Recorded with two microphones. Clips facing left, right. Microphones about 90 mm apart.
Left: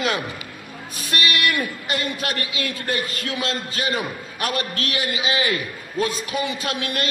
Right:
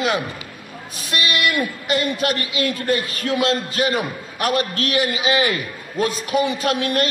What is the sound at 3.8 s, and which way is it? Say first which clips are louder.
A man's voice: right 2 dB; 30° right (ahead or behind).